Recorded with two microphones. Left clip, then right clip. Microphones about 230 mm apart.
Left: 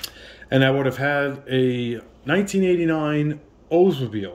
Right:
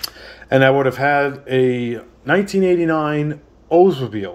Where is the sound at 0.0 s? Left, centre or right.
Centre.